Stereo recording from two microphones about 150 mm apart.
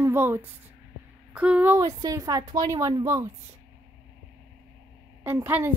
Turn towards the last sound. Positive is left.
turn(degrees=-15)  # may be behind; listen again after turning